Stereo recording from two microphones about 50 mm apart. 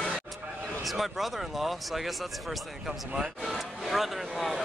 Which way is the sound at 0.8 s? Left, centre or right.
Centre.